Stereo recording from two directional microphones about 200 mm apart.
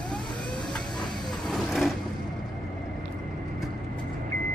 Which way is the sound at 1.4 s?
Centre (ahead or behind).